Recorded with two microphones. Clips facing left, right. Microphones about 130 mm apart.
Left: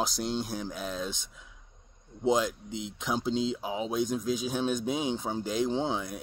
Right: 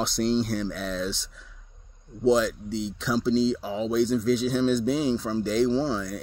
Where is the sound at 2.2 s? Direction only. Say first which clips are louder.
Right 5 dB; 15° left (ahead or behind).